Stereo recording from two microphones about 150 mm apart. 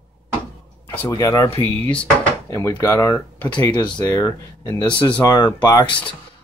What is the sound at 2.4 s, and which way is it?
Speech, 20° left (ahead or behind).